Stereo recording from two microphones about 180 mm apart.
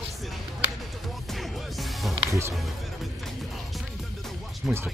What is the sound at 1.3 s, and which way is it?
Music, centre (ahead or behind).